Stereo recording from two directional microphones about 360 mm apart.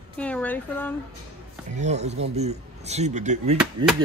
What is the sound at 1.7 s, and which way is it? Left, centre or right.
Speech, centre.